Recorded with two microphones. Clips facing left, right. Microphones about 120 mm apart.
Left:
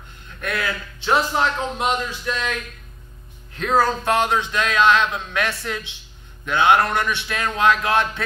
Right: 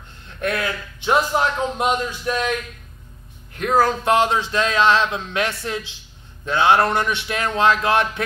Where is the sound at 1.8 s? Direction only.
15° right (ahead or behind).